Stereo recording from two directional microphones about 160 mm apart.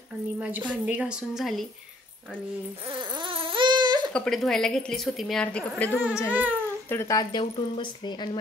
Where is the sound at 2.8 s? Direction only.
30° right (ahead or behind).